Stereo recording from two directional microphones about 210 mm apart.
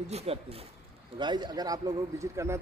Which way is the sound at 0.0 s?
30° right (ahead or behind).